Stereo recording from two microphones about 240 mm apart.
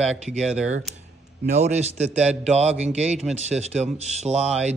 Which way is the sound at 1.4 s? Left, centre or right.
Right.